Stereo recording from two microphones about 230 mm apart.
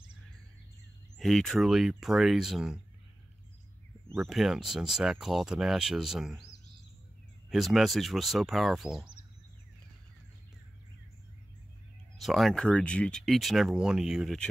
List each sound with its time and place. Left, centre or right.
1.1 s speech: centre
4.1 s speech: centre
12.2 s speech: centre